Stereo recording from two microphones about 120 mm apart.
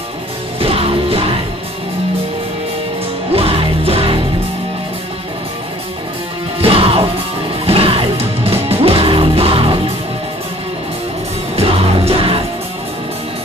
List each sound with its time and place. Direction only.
0.6 s music: 50° right (ahead or behind)
3.3 s music: 55° right (ahead or behind)
6.6 s music: 55° right (ahead or behind)
11.5 s music: 55° right (ahead or behind)